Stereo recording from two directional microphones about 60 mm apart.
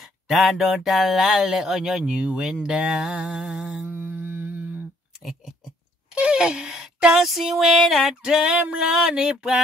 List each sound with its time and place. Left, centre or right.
0.3 s speech: centre
3.8 s humming: right
6.1 s speech: centre
7.2 s music: centre
8.2 s speech: centre